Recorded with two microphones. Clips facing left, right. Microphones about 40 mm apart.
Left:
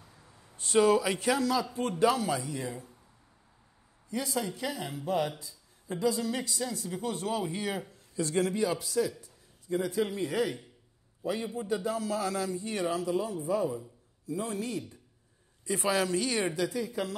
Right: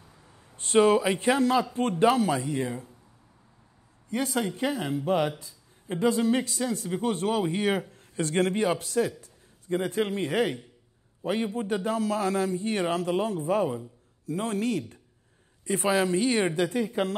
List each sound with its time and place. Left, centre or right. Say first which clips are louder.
0.0 s a sound: right 2 dB; centre
0.6 s speech: right 3 dB; right
4.1 s a man's voice: right 5 dB; right
15.6 s a man's voice: right 4 dB; right
15.9 s speech: right 5 dB; right